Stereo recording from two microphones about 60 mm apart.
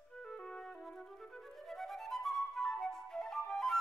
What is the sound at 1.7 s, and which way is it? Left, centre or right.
Flute, centre.